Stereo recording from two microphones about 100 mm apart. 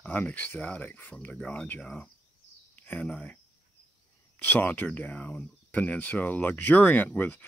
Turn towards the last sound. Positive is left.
turn(degrees=20)  # may be behind; listen again after turning